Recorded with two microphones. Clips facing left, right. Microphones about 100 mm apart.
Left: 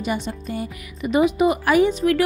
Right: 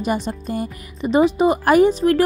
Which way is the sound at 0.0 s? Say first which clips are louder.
Right 3 dB; 40° right (ahead or behind).